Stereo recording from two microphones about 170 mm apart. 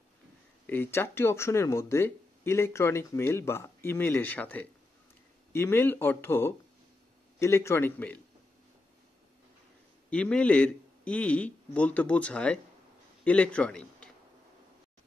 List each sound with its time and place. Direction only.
0.7 s speech: 15° left (ahead or behind)
10.0 s a man's voice: 5° left (ahead or behind)